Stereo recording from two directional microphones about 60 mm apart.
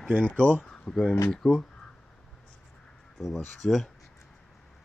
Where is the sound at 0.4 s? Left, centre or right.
Left.